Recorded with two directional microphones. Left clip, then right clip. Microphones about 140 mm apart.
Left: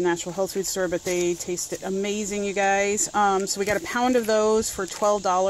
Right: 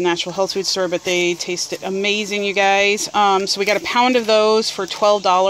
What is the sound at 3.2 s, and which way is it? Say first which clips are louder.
Speech: right 5 dB; 40° left (ahead or behind).